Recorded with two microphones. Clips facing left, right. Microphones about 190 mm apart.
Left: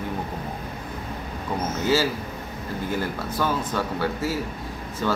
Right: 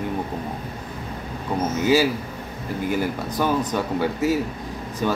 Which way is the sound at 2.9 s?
15° right (ahead or behind).